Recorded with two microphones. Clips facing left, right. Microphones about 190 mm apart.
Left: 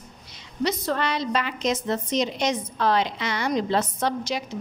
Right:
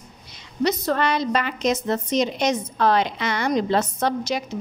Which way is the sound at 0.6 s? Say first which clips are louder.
Right 4 dB; 45° right (ahead or behind).